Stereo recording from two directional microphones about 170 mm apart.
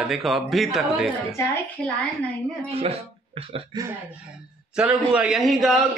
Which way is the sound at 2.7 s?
35° right (ahead or behind).